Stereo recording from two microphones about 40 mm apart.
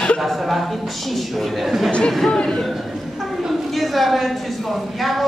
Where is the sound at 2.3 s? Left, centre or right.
Centre.